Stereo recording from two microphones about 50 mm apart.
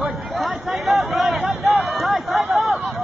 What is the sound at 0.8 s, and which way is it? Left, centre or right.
Chatter, centre.